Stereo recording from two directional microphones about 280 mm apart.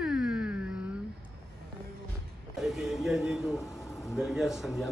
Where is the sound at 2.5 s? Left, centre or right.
Centre.